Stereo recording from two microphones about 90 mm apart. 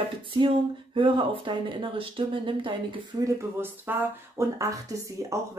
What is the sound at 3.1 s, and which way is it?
Speech, 45° right (ahead or behind).